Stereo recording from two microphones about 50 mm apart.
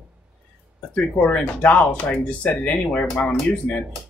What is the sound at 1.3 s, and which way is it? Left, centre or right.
Speech, left.